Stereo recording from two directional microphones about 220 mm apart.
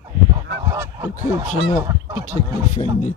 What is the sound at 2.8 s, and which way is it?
Speech, 25° left (ahead or behind).